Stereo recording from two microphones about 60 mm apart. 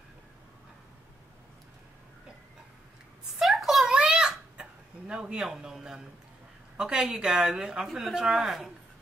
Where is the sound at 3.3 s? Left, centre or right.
Centre.